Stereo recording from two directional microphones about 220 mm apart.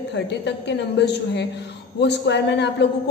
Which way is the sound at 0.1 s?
50° left (ahead or behind).